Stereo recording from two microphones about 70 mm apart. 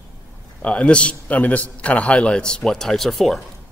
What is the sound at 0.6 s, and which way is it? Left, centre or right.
Speech, centre.